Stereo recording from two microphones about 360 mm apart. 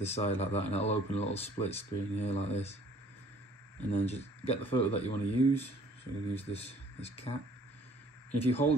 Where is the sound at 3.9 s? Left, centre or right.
Centre.